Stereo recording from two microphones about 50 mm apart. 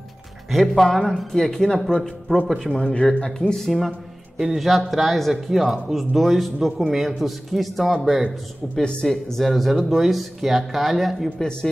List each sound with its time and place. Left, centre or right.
0.5 s speech: centre
2.7 s speech: left
3.3 s speech: centre
4.4 s speech: centre
9.0 s speech: centre